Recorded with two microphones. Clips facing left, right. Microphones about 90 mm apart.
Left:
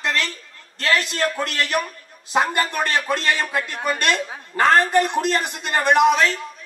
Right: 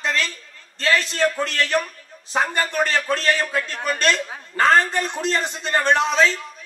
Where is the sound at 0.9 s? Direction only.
15° left (ahead or behind).